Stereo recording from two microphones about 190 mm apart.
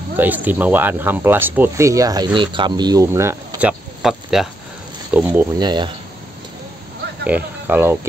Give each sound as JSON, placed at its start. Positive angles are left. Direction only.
{"t": 0.1, "sound": "speech", "side_deg": -10}
{"t": 4.0, "sound": "speech", "side_deg": 0}
{"t": 5.6, "sound": "speech", "side_deg": -25}
{"t": 7.2, "sound": "speech", "side_deg": -10}